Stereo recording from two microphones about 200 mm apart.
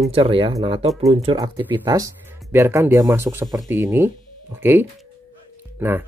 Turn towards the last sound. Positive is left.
turn(degrees=-10)  # may be behind; listen again after turning